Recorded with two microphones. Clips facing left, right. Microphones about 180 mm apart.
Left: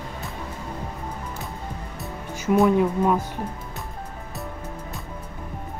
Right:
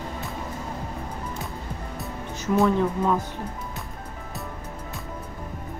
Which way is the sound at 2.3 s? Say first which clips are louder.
Left 3 dB; 15° left (ahead or behind).